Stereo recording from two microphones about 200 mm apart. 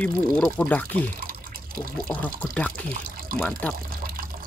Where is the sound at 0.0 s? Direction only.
5° left (ahead or behind).